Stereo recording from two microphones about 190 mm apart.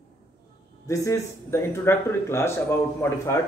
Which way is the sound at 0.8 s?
15° left (ahead or behind).